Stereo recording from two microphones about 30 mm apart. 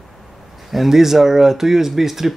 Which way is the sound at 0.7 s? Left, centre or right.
Centre.